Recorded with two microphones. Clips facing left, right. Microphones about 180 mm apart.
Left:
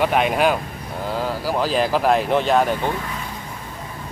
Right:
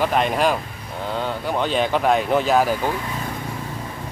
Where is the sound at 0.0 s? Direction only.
5° left (ahead or behind).